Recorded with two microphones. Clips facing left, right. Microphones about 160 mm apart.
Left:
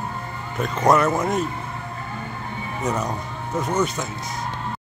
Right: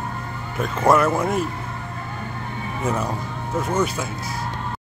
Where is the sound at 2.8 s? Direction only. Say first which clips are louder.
Right 1 dB; 10° right (ahead or behind).